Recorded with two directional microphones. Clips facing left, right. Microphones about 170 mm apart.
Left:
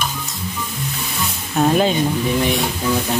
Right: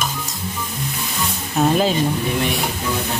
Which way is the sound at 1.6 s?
Centre (ahead or behind).